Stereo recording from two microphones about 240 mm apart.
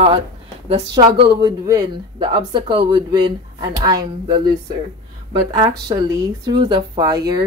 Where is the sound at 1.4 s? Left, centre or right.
Centre.